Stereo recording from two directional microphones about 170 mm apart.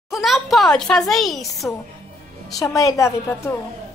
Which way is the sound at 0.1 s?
Centre (ahead or behind).